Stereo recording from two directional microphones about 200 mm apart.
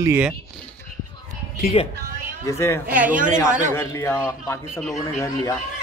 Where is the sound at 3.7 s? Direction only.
15° left (ahead or behind).